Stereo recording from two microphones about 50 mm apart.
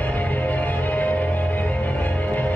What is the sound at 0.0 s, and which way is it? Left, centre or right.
Music, left.